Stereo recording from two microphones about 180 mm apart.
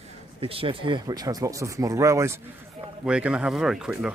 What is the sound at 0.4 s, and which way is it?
Speech, 30° right (ahead or behind).